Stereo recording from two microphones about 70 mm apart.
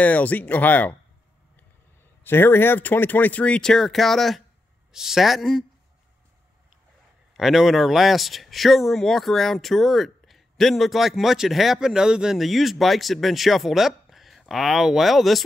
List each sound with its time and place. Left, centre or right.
0.0 s speech: left
2.2 s speech: left; by 5.7 s centre
7.3 s speech: centre